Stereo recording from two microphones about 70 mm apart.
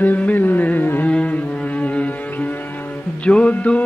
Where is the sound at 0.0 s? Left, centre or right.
Left.